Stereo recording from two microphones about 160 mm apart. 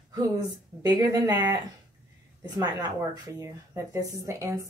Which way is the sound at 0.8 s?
25° right (ahead or behind).